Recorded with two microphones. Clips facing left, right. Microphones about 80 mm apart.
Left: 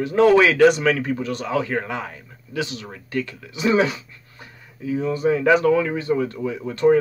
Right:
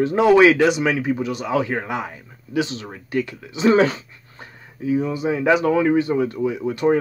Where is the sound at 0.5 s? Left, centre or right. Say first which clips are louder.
Left 3 dB; centre; by 3.7 s right.